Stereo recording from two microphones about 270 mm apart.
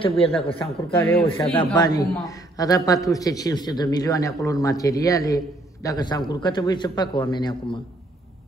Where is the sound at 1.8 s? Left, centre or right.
Centre.